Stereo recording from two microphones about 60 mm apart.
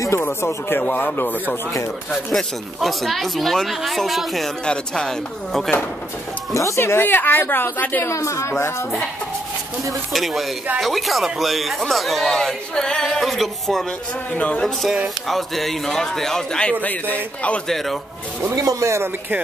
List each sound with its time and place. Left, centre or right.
0.1 s a woman's voice: left
0.7 s a man's voice: left
2.3 s speech: centre
4.6 s a man's voice: centre
6.5 s speech: left
6.8 s speech: left
8.0 s a woman's voice: left
10.1 s speech: centre
14.3 s a man's voice: left
15.2 s a man's voice: centre
16.8 s a man's voice: left
17.6 s speech: centre
18.5 s speech: right